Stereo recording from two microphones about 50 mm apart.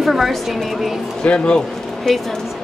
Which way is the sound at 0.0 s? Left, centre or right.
Centre.